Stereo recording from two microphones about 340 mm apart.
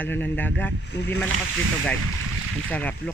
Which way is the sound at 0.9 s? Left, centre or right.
Left.